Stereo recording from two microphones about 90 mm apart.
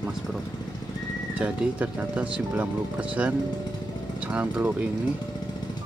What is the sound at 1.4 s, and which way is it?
Speech, 15° right (ahead or behind).